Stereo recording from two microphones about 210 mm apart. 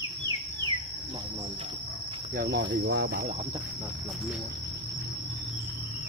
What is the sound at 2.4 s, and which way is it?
Speech, 50° right (ahead or behind).